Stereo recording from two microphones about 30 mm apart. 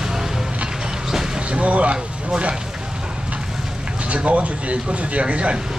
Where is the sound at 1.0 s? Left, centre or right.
Centre.